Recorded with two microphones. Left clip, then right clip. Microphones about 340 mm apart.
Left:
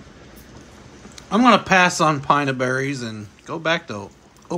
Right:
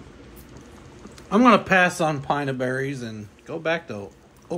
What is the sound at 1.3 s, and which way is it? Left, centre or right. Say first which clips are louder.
Speech: left 2 dB; centre.